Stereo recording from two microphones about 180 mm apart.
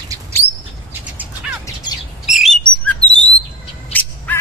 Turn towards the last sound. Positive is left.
turn(degrees=10)  # may be behind; listen again after turning